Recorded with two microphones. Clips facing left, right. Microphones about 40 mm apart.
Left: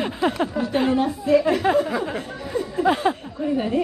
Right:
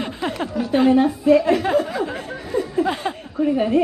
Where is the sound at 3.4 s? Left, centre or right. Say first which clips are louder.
Right 6 dB; centre.